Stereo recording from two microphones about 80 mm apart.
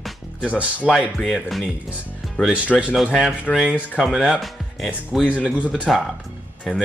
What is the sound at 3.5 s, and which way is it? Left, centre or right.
Speech, centre.